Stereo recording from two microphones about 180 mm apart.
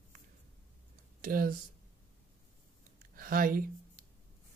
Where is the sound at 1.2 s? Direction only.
55° right (ahead or behind).